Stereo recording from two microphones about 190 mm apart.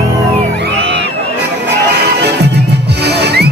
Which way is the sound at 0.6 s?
65° right (ahead or behind).